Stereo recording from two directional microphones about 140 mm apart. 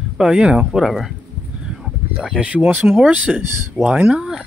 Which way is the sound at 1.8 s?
5° right (ahead or behind).